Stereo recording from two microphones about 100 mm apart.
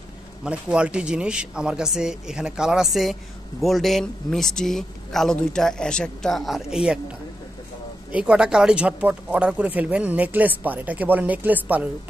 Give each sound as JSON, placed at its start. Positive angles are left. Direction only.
{"t": 0.4, "sound": "speech", "side_deg": -10}
{"t": 8.1, "sound": "speech", "side_deg": -10}